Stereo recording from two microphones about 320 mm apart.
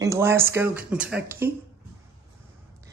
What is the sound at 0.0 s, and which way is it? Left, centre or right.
Speech, centre.